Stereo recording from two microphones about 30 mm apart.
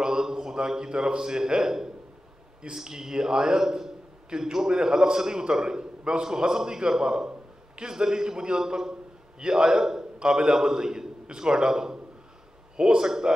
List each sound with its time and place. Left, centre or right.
0.0 s a man's voice: right
13.0 s speech: centre